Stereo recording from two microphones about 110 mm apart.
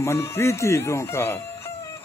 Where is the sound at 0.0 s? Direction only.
25° left (ahead or behind).